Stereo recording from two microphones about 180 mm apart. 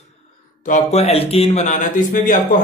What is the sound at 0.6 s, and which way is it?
Speech, 40° left (ahead or behind).